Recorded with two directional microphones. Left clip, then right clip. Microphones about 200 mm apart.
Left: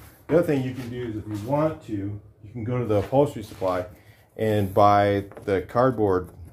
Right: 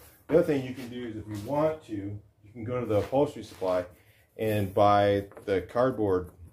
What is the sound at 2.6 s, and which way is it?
Speech, 35° left (ahead or behind).